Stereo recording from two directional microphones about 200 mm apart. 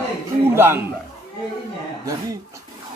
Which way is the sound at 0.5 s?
10° right (ahead or behind).